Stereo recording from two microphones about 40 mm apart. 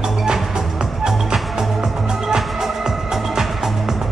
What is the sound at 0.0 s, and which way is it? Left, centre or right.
Music, centre.